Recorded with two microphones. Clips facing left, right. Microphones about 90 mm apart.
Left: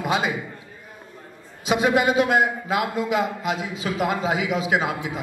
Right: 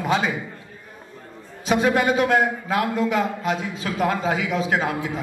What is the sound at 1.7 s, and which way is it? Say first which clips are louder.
A man's voice: even; 10° left (ahead or behind).